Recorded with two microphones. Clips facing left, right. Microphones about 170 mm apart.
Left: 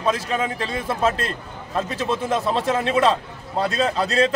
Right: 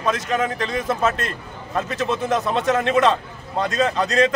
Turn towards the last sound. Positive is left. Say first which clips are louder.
# right 1 dB
turn(degrees=30)  # may be behind; listen again after turning